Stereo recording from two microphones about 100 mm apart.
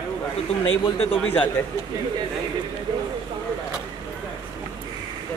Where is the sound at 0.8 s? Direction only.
65° left (ahead or behind).